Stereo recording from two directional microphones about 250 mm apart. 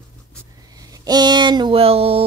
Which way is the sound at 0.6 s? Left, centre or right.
Centre.